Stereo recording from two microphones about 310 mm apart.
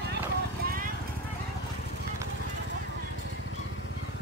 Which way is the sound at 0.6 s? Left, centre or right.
Right.